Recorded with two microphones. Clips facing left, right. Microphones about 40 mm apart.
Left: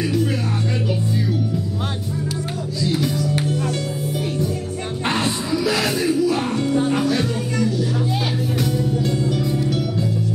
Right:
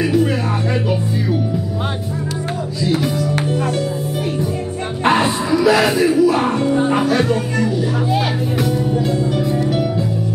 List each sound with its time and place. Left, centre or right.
0.0 s music: centre
2.8 s music: centre
5.0 s music: centre